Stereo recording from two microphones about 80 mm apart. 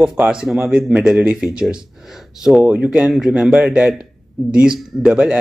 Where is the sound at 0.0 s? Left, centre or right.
Centre.